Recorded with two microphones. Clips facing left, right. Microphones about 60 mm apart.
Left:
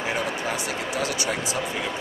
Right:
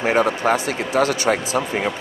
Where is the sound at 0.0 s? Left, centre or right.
Right.